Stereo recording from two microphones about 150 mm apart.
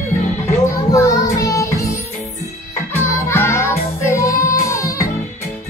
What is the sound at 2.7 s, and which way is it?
Music, 20° left (ahead or behind).